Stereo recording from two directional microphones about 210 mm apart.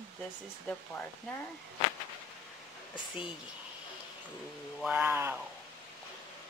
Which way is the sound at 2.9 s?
25° left (ahead or behind).